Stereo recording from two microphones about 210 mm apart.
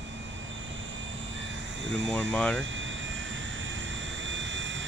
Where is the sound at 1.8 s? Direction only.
60° right (ahead or behind).